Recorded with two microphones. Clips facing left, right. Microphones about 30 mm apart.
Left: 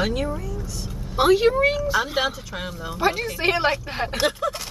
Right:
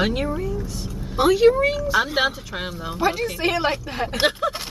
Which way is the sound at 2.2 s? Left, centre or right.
Centre.